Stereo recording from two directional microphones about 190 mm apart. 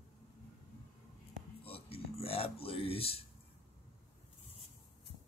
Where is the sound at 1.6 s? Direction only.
30° left (ahead or behind).